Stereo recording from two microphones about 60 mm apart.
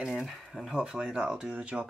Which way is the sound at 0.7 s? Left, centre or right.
Centre.